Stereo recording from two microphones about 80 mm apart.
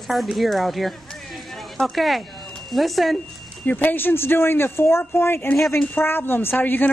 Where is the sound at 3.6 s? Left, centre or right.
Left.